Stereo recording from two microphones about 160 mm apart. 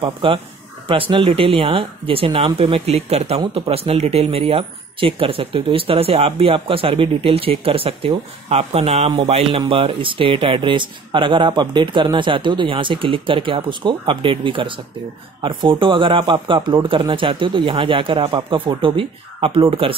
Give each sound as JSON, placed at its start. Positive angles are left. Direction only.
{"t": 0.0, "sound": "speech", "side_deg": -35}